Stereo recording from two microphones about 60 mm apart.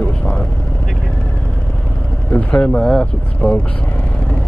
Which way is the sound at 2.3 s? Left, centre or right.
Left.